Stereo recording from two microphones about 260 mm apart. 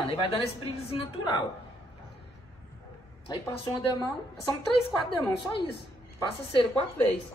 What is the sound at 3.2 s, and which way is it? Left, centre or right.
Speech, centre.